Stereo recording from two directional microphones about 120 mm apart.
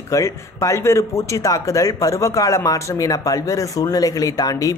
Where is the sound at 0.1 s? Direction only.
25° left (ahead or behind).